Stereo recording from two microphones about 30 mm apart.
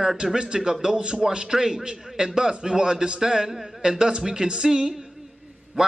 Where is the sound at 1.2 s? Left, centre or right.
Right.